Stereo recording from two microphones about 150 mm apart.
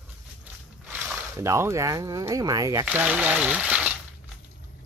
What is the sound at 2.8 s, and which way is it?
Speech, 10° right (ahead or behind).